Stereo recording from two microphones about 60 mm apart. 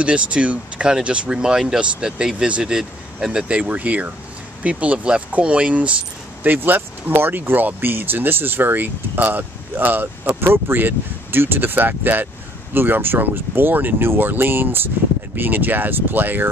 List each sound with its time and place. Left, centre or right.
0.0 s speech: centre